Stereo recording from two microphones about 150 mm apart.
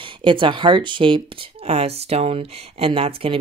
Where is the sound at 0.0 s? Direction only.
35° right (ahead or behind).